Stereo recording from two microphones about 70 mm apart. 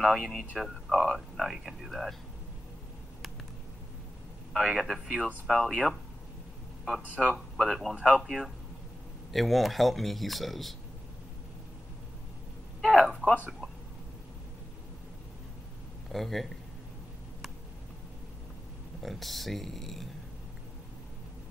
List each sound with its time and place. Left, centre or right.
0.0 s speech: centre
4.6 s speech: centre
7.3 s speech: centre
7.9 s speech: centre
8.2 s speech: centre
12.9 s a sound: centre
16.1 s speech: centre
19.0 s speech: centre